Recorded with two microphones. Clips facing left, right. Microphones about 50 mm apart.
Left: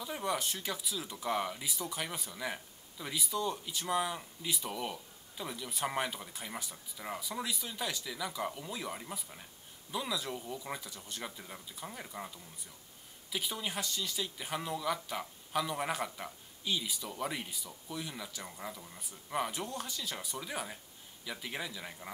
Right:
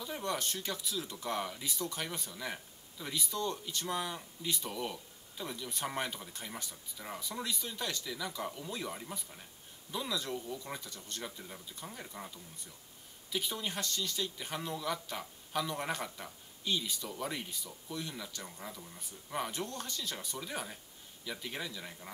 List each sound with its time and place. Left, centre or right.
0.0 s speech: centre